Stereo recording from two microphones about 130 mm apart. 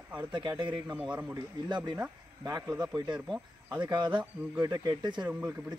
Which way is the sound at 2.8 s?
30° right (ahead or behind).